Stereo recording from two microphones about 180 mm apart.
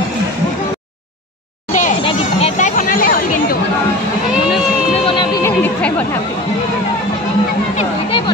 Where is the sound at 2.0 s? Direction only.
40° left (ahead or behind).